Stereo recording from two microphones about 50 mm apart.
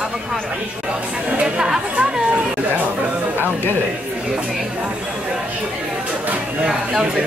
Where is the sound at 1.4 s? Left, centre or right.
Centre.